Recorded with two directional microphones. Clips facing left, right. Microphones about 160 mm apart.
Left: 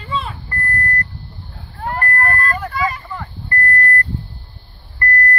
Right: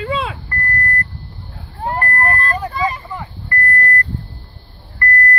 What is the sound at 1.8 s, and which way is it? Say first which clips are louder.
Vehicle: right 1 dB; 25° right (ahead or behind).